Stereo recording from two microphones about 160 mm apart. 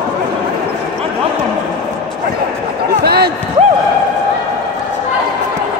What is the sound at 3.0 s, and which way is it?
Basketball bounce, 85° right.